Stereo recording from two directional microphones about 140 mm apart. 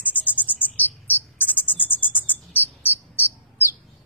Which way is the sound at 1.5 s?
15° left (ahead or behind).